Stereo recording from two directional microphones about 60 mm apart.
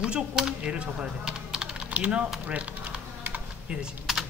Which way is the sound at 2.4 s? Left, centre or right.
Right.